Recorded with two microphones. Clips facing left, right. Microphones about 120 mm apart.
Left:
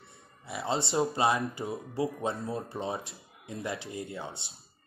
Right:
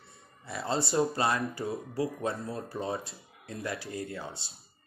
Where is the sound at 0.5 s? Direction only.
25° left (ahead or behind).